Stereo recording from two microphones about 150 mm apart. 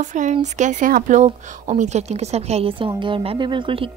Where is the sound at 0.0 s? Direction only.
55° right (ahead or behind).